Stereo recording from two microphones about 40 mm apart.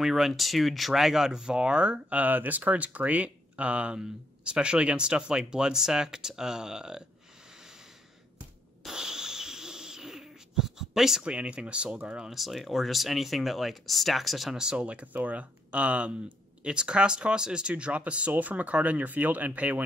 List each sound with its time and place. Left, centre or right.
0.0 s speech: centre; by 2.2 s right
2.2 s speech: right
4.0 s speech: right
8.9 s a sound: centre
11.2 s speech: right
12.3 s speech: centre
14.5 s speech: centre
14.8 s speech: right